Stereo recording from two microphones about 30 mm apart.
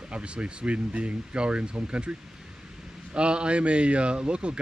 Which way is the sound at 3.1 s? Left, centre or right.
Right.